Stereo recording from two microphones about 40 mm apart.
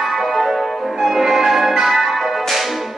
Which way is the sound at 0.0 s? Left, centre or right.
Centre.